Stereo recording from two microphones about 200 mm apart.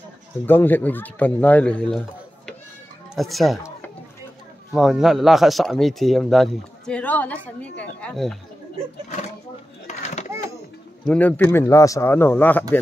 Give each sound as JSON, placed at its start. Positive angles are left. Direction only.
{"t": 0.5, "sound": "speech", "side_deg": 10}
{"t": 3.2, "sound": "speech", "side_deg": 0}
{"t": 4.7, "sound": "speech", "side_deg": 0}
{"t": 9.8, "sound": "a sound", "side_deg": 35}
{"t": 11.1, "sound": "speech", "side_deg": 5}